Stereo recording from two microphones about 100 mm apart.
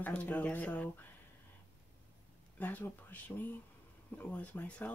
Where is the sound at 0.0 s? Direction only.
15° left (ahead or behind).